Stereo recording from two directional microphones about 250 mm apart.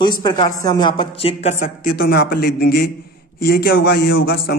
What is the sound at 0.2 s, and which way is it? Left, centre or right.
Speech, centre.